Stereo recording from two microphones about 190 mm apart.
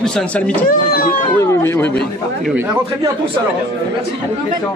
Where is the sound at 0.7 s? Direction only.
50° left (ahead or behind).